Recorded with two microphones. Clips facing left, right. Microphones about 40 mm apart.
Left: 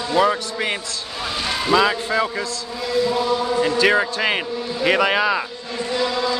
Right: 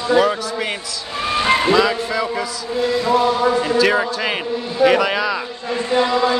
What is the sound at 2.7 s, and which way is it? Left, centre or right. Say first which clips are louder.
Chant: right 4 dB; right.